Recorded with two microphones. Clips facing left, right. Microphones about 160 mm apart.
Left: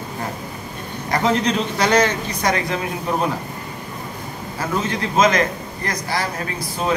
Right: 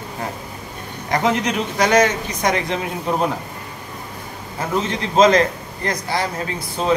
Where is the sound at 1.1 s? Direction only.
20° right (ahead or behind).